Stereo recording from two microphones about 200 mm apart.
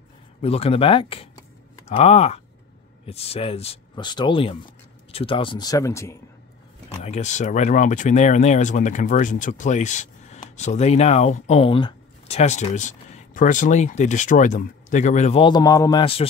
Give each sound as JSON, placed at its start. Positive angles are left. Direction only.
{"t": 0.4, "sound": "speech", "side_deg": 30}
{"t": 7.0, "sound": "speech", "side_deg": 35}